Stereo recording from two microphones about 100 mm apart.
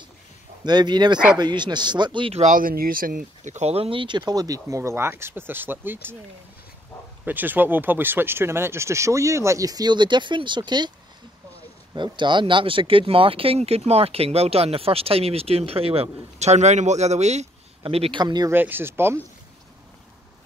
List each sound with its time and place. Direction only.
0.7 s speech: 45° right (ahead or behind)
3.6 s speech: 75° right (ahead or behind); by 6.1 s 20° right (ahead or behind)
7.2 s speech: 20° right (ahead or behind); by 10.9 s 50° right (ahead or behind)
11.9 s speech: 50° right (ahead or behind); by 17.4 s 90° right
17.8 s speech: 75° right (ahead or behind)
18.1 s speech: 45° right (ahead or behind)
18.5 s speech: 20° right (ahead or behind)